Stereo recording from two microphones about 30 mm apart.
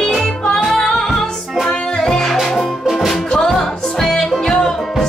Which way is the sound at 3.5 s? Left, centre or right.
Centre.